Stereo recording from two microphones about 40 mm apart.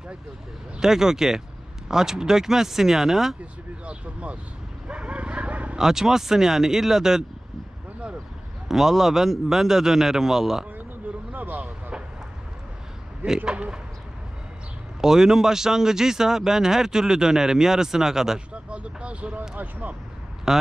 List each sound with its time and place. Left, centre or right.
0.7 s speech: centre
3.8 s speech: right
4.8 s bow-wow: right
5.8 s speech: centre
8.6 s speech: centre
11.3 s speech: right
15.0 s speech: centre
18.5 s speech: right
19.5 s speech: right
20.5 s speech: centre